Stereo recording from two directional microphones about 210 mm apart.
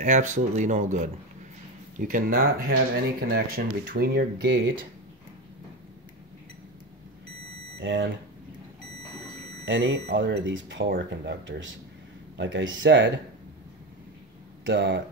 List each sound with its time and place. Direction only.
0.0 s speech: 40° right (ahead or behind); by 4.6 s 55° right (ahead or behind)
7.8 s speech: 60° right (ahead or behind)
9.7 s speech: 55° right (ahead or behind)
14.6 s speech: 55° right (ahead or behind)